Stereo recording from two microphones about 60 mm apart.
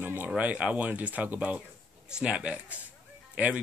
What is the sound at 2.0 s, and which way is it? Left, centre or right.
A man's voice, centre.